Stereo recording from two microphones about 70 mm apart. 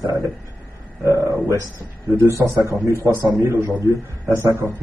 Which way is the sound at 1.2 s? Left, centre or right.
Right.